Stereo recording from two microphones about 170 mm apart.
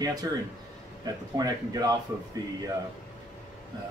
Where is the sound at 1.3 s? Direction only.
25° right (ahead or behind).